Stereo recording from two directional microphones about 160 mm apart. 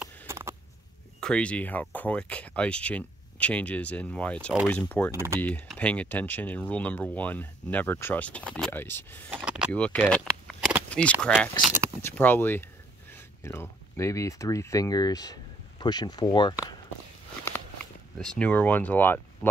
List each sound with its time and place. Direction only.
0.3 s a sound: 15° right (ahead or behind)
1.2 s speech: 5° left (ahead or behind)
5.1 s speech: 15° right (ahead or behind)
5.4 s speech: 10° left (ahead or behind)
9.3 s vehicle: 5° right (ahead or behind)
9.7 s speech: 5° left (ahead or behind); by 16.5 s 25° left (ahead or behind)
18.1 s speech: 5° left (ahead or behind)